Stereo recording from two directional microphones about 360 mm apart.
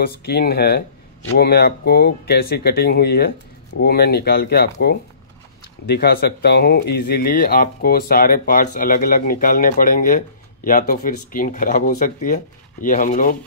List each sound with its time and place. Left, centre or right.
0.0 s speech: left